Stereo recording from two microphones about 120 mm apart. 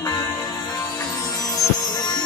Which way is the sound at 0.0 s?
30° left (ahead or behind).